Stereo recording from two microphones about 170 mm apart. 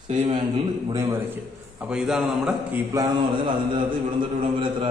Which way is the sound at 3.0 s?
25° right (ahead or behind).